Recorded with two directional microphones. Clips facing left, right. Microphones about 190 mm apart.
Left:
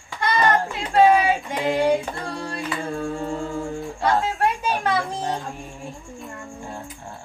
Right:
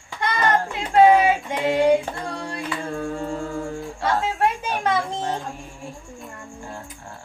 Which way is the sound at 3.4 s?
20° left (ahead or behind).